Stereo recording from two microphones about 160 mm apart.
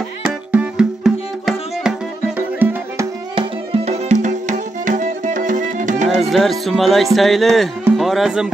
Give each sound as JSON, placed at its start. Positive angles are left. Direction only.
{"t": 0.5, "sound": "music", "side_deg": -5}
{"t": 3.3, "sound": "music", "side_deg": -40}
{"t": 6.2, "sound": "speech", "side_deg": 0}